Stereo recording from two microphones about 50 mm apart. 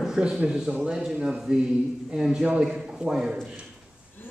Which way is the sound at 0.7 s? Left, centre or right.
Right.